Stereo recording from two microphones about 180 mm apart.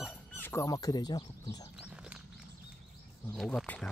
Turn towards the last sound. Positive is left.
turn(degrees=5)  # may be behind; listen again after turning